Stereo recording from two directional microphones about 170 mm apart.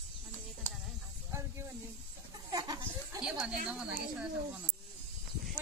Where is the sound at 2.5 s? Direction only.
25° right (ahead or behind).